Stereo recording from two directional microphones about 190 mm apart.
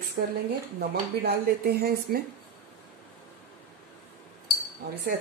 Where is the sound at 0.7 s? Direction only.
55° right (ahead or behind).